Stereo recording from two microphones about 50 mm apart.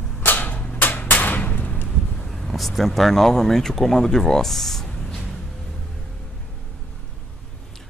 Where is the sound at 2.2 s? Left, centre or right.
Centre.